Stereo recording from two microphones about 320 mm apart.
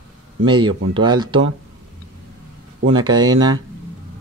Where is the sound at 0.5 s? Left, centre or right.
Centre.